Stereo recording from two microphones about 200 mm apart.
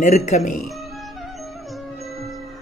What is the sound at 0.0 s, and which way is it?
Speech, 35° left (ahead or behind).